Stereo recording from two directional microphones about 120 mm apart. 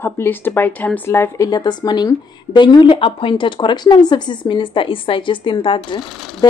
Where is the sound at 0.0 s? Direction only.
15° left (ahead or behind).